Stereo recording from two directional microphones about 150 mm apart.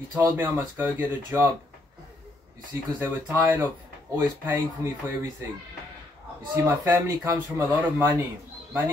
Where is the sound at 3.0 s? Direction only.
15° right (ahead or behind).